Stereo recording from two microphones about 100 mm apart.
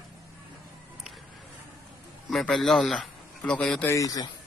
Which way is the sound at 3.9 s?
35° left (ahead or behind).